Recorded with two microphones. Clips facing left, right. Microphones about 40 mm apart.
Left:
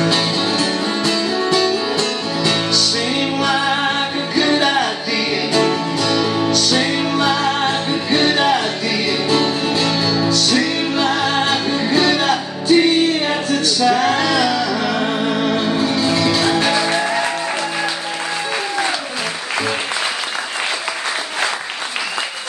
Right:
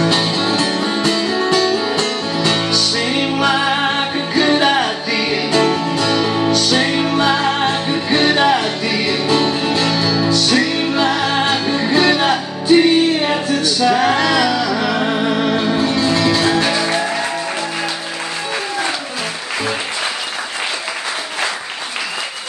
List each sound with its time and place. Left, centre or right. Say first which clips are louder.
0.1 s music: right 1 dB; centre